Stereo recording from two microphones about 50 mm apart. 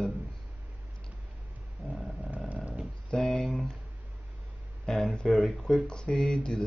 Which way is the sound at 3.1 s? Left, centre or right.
Centre.